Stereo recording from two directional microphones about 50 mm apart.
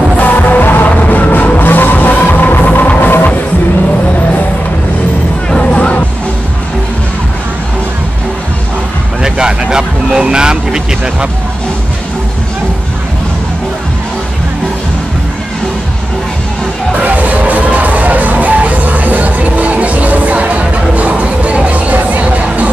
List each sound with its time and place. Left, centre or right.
0.2 s music: left
5.5 s music: left
9.2 s vehicle: centre
17.0 s music: right